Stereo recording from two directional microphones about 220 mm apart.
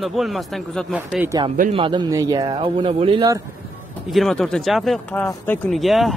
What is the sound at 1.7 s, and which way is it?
Speech, 20° right (ahead or behind).